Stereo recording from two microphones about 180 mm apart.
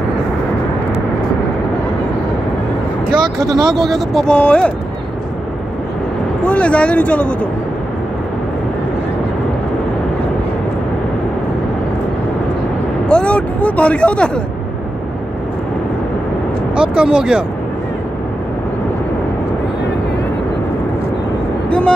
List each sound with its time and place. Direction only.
3.3 s speech: 20° right (ahead or behind)
3.7 s speech: centre (ahead or behind)
6.4 s speech: 5° left (ahead or behind)
13.1 s a sound: 5° left (ahead or behind)
16.7 s speech: 5° right (ahead or behind)
21.6 s vehicle: 5° left (ahead or behind)